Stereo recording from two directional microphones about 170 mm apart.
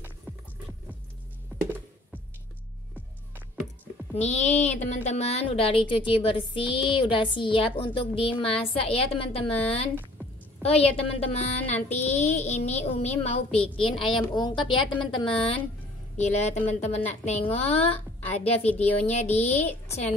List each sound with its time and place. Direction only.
4.1 s a woman's voice: 40° left (ahead or behind)
19.7 s speech: 10° left (ahead or behind)